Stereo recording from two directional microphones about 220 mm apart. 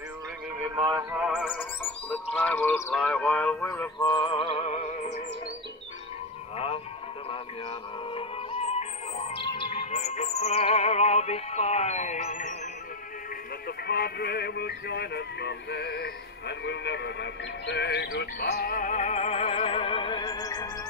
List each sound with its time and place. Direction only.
0.6 s a sound: 10° right (ahead or behind)
1.5 s speech: 10° left (ahead or behind)
4.1 s music: 20° left (ahead or behind)
6.5 s music: 25° left (ahead or behind)
8.1 s music: 25° left (ahead or behind)
13.7 s music: 45° left (ahead or behind); by 20.7 s 15° left (ahead or behind)